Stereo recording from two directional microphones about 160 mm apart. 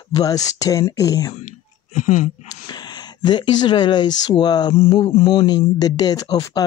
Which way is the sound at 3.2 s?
30° left (ahead or behind).